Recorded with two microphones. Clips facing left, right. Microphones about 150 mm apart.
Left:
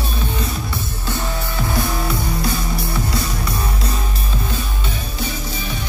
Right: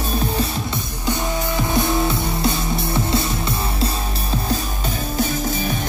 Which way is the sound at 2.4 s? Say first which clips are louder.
Right 2 dB; 25° right (ahead or behind).